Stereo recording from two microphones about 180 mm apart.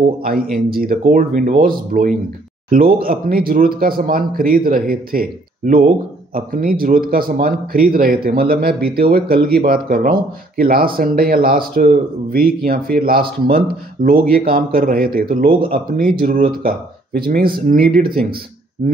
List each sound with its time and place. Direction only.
0.7 s speech: 55° right (ahead or behind)